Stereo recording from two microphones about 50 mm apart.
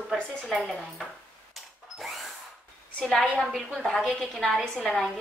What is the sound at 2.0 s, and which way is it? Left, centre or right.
Drill, centre.